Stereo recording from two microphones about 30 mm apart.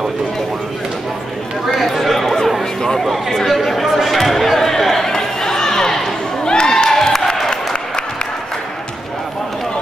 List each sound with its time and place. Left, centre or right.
1.9 s chatter: centre
3.3 s a sound: centre; by 6.9 s left
6.9 s crowd: centre